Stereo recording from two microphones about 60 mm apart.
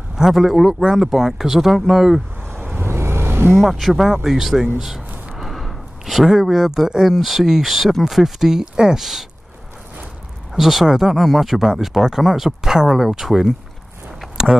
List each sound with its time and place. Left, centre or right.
0.1 s speech: centre
2.8 s vehicle: right
3.5 s speech: centre
5.3 s a sound: centre
7.2 s speech: centre
10.5 s speech: centre
14.2 s a sound: centre